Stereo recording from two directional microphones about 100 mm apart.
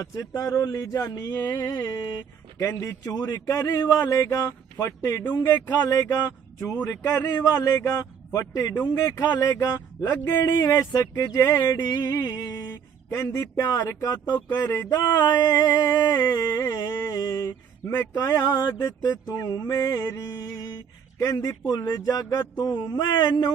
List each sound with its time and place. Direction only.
0.0 s a man's voice: 35° left (ahead or behind)
1.5 s music: 45° left (ahead or behind)
2.6 s a man's voice: 30° left (ahead or behind)
7.3 s a man's voice: 35° left (ahead or behind)
14.6 s speech: 20° left (ahead or behind)
15.1 s a man's voice: 45° left (ahead or behind)
17.5 s speech: 25° left (ahead or behind)
18.1 s a man's voice: 35° left (ahead or behind)